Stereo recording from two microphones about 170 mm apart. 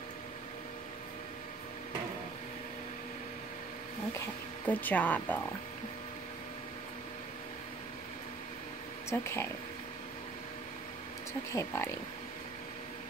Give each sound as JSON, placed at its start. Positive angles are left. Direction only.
{"t": 4.6, "sound": "speech", "side_deg": 10}
{"t": 9.1, "sound": "speech", "side_deg": 15}
{"t": 11.5, "sound": "speech", "side_deg": 15}